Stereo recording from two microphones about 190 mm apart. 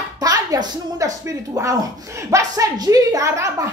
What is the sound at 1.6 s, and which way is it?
Speech, 20° right (ahead or behind).